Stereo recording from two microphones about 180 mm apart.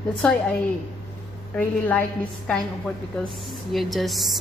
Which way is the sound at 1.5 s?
10° left (ahead or behind).